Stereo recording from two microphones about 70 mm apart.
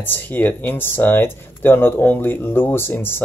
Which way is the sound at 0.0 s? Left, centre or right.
Left.